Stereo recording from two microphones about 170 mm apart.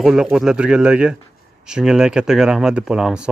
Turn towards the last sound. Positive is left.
turn(degrees=-5)  # may be behind; listen again after turning